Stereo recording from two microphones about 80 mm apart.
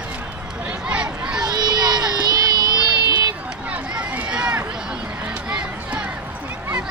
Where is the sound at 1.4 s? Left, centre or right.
Right.